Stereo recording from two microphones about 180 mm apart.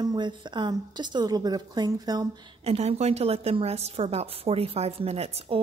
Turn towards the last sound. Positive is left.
turn(degrees=-35)  # may be behind; listen again after turning